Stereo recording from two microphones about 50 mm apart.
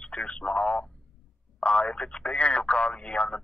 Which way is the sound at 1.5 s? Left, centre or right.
Left.